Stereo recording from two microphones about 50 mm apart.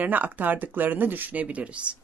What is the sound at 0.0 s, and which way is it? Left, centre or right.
Speech, right.